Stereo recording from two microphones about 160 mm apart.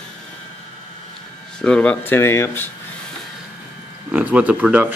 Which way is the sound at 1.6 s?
5° left (ahead or behind).